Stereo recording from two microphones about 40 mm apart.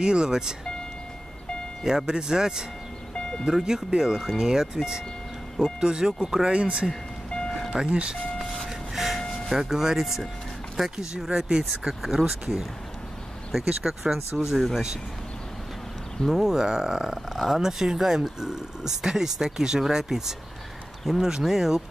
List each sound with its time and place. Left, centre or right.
0.0 s speech: centre
1.9 s speech: centre
3.2 s ice cream truck: centre
3.4 s speech: centre
6.5 s speech: right
7.2 s music: left
7.7 s speech: right
8.6 s vehicle: centre
9.6 s speech: centre
16.3 s speech: centre